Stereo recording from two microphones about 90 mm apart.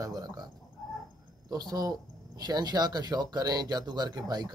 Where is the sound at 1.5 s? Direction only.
45° right (ahead or behind).